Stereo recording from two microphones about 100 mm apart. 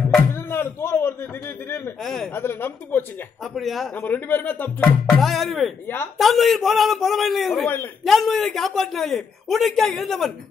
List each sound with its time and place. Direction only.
0.3 s a sound: 25° left (ahead or behind)
2.3 s speech: 20° left (ahead or behind)
3.5 s a man's voice: centre (ahead or behind)
3.9 s speech: 20° left (ahead or behind)
4.8 s a man's voice: 5° left (ahead or behind)
7.6 s speech: 20° left (ahead or behind)
8.0 s a man's voice: centre (ahead or behind)